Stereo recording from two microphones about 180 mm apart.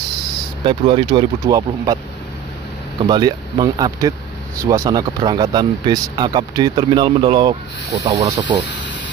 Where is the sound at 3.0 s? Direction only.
25° right (ahead or behind).